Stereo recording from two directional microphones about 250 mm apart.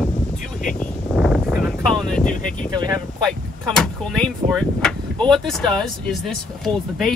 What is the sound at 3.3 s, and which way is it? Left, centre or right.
Speech, centre.